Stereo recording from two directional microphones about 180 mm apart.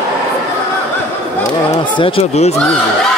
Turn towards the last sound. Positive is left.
turn(degrees=35)  # may be behind; listen again after turning